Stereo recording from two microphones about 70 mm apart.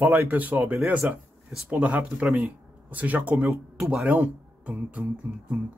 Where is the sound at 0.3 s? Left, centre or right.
Right.